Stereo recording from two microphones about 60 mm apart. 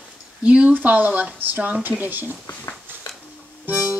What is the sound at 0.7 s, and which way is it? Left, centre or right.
Speech, right.